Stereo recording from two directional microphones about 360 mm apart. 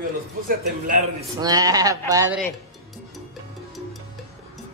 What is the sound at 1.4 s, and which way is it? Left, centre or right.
Speech, centre.